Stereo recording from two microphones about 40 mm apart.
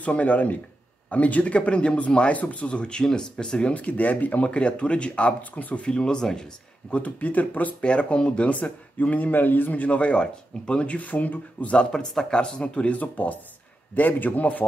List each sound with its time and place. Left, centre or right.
0.0 s a man's voice: left
3.7 s a man's voice: left
4.5 s speech: left
5.6 s a man's voice: left
5.9 s speech: centre
6.9 s a man's voice: left
7.8 s speech: left
9.9 s speech: left
11.0 s speech: left
11.7 s speech: left
13.0 s a man's voice: left